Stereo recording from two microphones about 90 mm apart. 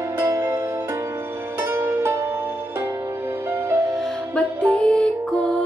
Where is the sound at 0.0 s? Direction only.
35° right (ahead or behind).